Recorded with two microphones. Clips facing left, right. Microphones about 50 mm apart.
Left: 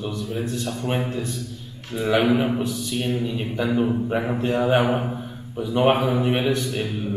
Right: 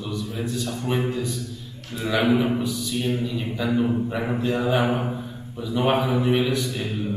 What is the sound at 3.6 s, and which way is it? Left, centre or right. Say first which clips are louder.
Speech: left 1 dB; centre.